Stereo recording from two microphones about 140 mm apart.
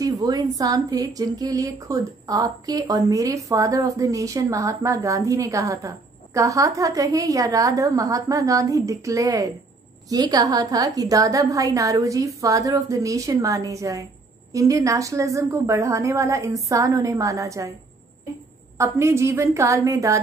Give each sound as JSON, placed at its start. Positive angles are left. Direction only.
{"t": 0.0, "sound": "a woman's voice", "side_deg": -25}
{"t": 18.8, "sound": "a woman's voice", "side_deg": -20}